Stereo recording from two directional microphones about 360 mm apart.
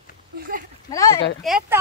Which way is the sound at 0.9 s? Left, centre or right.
Centre.